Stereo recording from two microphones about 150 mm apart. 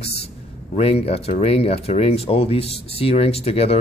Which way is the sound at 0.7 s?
40° left (ahead or behind).